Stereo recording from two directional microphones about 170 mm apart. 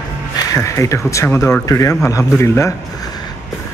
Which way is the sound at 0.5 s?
20° left (ahead or behind).